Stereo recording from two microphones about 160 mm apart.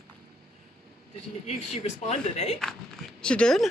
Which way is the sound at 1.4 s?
45° left (ahead or behind).